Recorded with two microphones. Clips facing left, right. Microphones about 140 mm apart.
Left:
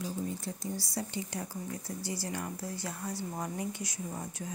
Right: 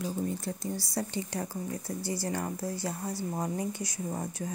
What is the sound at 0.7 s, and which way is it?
Speech, 55° right (ahead or behind).